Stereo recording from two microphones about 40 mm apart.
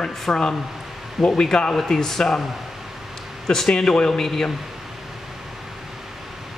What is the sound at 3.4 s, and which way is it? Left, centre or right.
A man's voice, centre.